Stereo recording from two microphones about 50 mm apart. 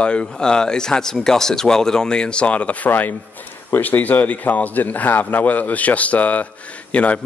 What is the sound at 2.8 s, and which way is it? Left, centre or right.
A man's voice, left.